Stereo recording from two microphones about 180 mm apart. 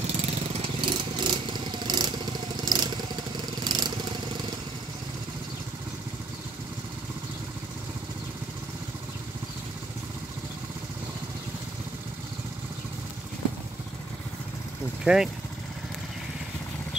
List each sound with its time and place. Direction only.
0.0 s vehicle: 35° right (ahead or behind)
15.1 s speech: 5° right (ahead or behind)